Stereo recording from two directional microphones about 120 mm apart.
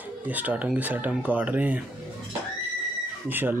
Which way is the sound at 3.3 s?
15° right (ahead or behind).